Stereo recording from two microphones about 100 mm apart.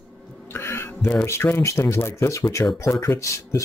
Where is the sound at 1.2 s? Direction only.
25° left (ahead or behind).